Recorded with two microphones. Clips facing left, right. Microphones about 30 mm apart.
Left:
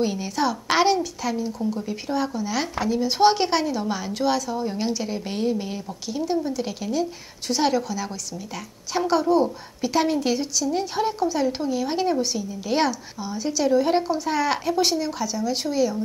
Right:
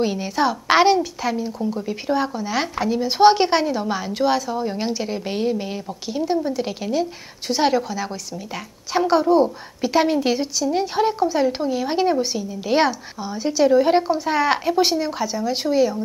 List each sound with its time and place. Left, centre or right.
0.0 s a woman's voice: centre